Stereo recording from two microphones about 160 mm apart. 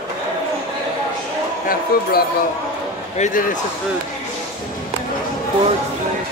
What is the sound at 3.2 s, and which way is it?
Speech, 55° left (ahead or behind).